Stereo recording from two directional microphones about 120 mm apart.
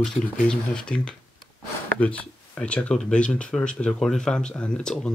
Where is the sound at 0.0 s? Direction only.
5° left (ahead or behind).